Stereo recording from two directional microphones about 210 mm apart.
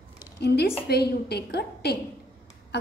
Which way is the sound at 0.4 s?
50° left (ahead or behind).